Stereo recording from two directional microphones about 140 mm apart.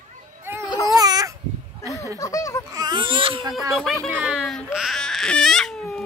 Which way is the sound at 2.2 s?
25° left (ahead or behind).